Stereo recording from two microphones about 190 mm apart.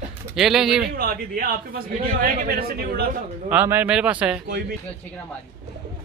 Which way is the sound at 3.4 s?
10° right (ahead or behind).